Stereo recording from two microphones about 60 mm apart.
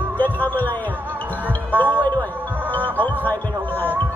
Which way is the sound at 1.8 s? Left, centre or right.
Left.